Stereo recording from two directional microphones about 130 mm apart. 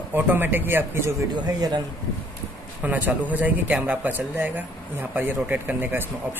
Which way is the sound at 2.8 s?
15° right (ahead or behind).